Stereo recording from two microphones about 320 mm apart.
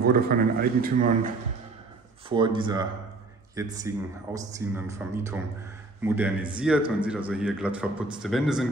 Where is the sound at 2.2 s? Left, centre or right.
Centre.